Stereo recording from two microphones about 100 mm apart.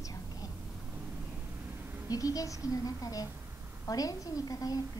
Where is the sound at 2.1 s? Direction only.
35° left (ahead or behind).